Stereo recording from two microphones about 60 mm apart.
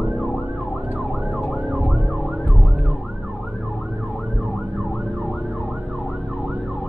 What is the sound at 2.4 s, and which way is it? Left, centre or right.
Emergency vehicle, left.